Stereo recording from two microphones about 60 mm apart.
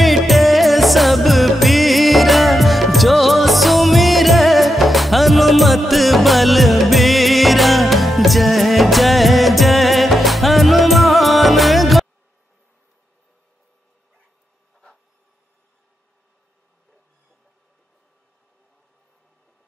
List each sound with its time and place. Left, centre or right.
0.0 s music: centre